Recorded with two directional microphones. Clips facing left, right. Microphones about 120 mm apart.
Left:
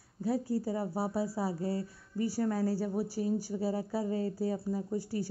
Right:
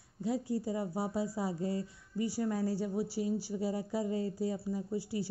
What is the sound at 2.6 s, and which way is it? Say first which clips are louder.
A woman's voice: left 2 dB; 40° left (ahead or behind).